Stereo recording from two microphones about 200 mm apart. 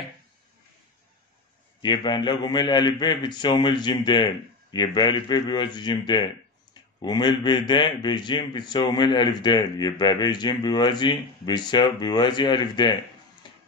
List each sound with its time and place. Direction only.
1.8 s a man's voice: 20° left (ahead or behind)
13.4 s music: 20° left (ahead or behind)